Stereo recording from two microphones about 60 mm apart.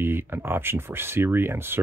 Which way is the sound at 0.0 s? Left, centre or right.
Right.